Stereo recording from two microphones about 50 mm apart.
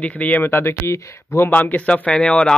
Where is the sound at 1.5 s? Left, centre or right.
Left.